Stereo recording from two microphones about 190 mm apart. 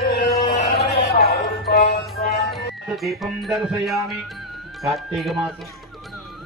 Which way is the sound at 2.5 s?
Centre (ahead or behind).